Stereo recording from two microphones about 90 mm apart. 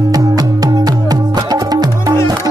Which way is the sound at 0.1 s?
45° right (ahead or behind).